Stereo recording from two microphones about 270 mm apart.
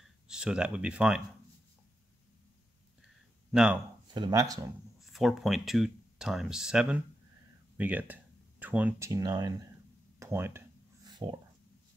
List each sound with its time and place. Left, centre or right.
0.3 s speech: centre
3.5 s speech: centre
4.1 s speech: centre
5.0 s speech: centre
10.1 s a sound: centre